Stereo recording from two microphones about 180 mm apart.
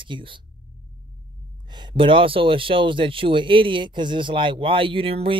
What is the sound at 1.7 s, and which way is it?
Speech, 25° right (ahead or behind).